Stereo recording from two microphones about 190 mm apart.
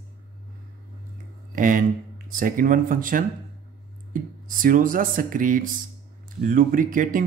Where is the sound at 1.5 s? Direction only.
45° right (ahead or behind).